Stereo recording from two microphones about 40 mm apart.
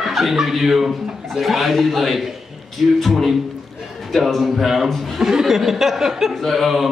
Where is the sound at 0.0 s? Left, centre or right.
Centre.